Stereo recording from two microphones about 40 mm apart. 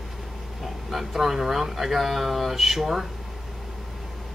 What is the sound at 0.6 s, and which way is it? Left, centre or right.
Speech, centre.